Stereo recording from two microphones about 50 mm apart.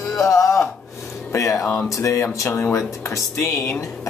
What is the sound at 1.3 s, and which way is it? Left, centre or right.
Speech, left.